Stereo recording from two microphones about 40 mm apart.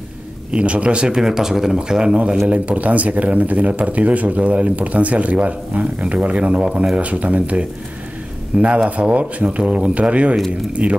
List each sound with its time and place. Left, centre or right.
0.5 s speech: right; by 1.8 s centre
1.8 s speech: centre
2.4 s speech: right
9.7 s speech: right